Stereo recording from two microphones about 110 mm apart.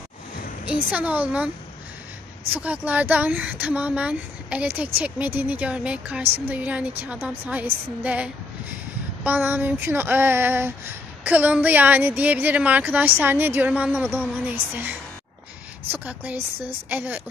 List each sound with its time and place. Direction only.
0.9 s a woman's voice: 15° right (ahead or behind)
2.5 s a woman's voice: 15° right (ahead or behind)
9.2 s a sound: 20° right (ahead or behind)
11.2 s a woman's voice: 15° right (ahead or behind)